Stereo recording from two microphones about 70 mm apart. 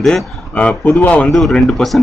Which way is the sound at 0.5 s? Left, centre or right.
Centre.